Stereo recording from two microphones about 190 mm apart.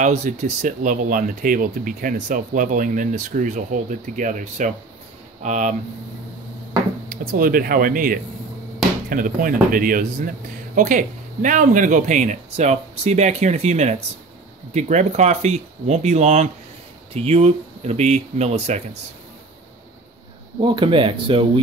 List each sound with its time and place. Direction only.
0.0 s speech: 40° right (ahead or behind)
7.1 s speech: 50° right (ahead or behind)
20.6 s speech: 25° right (ahead or behind)